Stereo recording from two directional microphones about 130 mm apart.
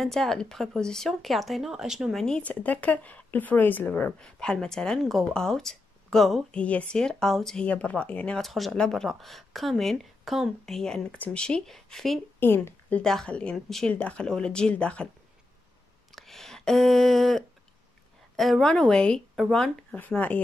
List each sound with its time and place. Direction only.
0.0 s speech: 5° left (ahead or behind)
12.4 s speech: 15° left (ahead or behind)
13.0 s speech: 5° left (ahead or behind)
16.2 s a sound: centre (ahead or behind)
18.3 s speech: centre (ahead or behind)